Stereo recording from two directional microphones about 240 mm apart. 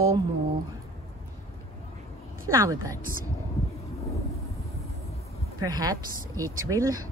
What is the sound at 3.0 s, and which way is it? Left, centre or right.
Speech, right.